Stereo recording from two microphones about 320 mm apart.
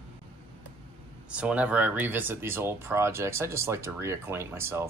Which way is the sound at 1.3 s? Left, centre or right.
Centre.